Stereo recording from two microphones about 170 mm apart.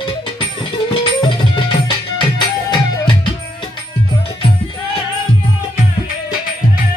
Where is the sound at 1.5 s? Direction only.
30° left (ahead or behind).